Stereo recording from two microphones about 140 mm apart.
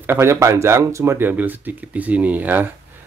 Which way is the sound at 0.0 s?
15° right (ahead or behind).